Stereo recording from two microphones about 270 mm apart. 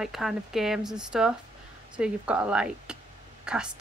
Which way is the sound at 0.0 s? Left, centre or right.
Centre.